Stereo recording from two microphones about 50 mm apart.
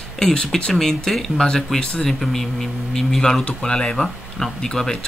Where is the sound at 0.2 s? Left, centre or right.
Centre.